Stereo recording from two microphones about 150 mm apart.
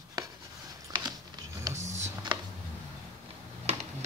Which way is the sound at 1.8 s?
50° right (ahead or behind).